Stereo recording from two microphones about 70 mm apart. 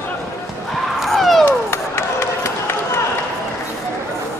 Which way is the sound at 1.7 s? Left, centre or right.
Left.